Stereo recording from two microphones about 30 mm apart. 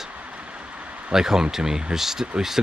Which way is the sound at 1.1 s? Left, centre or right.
Centre.